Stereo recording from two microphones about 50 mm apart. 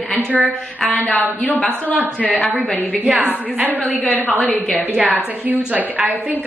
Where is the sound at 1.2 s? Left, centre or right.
Left.